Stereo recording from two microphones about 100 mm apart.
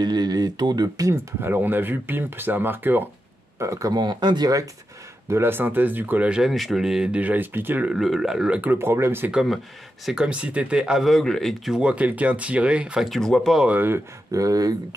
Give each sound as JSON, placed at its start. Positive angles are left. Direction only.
{"t": 0.0, "sound": "speech", "side_deg": -45}
{"t": 5.3, "sound": "speech", "side_deg": -25}
{"t": 7.9, "sound": "speech", "side_deg": 0}
{"t": 9.3, "sound": "speech", "side_deg": -5}
{"t": 13.7, "sound": "speech", "side_deg": -20}
{"t": 14.3, "sound": "speech", "side_deg": -35}